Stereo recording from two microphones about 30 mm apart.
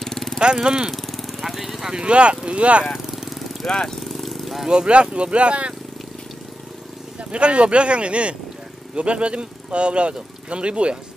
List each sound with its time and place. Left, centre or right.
0.6 s speech: right
0.9 s vehicle: centre
1.3 s lawn mower: centre
1.9 s speech: right
2.8 s lawn mower: centre
3.6 s speech: centre
4.0 s vehicle: centre
4.6 s speech: right
4.9 s speech: right
7.2 s speech: right